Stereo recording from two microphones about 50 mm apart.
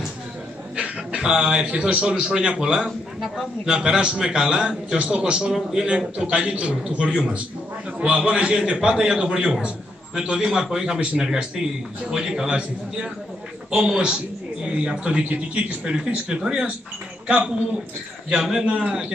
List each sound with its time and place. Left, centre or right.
0.7 s a man's voice: centre
5.9 s a man's voice: right
18.3 s a man's voice: centre
18.6 s speech: right